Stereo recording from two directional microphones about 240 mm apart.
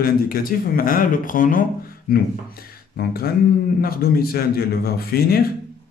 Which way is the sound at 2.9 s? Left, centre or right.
Left.